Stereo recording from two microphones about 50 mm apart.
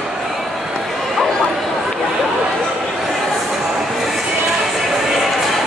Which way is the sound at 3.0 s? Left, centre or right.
Centre.